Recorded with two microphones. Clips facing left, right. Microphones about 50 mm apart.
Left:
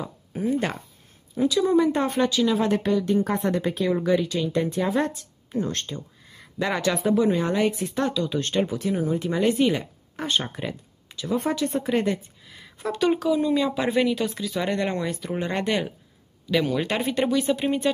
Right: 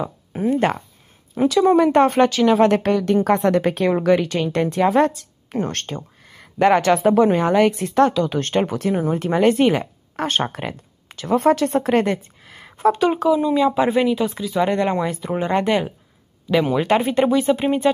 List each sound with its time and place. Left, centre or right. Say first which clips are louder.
0.0 s speech: right 5 dB; right
1.3 s a woman's voice: right 5 dB; right
13.3 s speech: right 5 dB; centre